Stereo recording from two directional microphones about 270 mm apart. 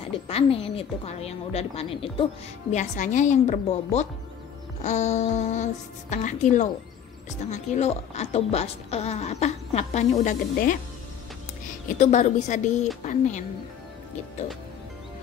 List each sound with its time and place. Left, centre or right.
0.3 s a woman's voice: left
12.0 s a woman's voice: left